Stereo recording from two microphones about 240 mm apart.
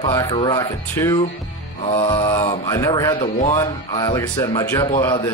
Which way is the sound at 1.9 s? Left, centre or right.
Left.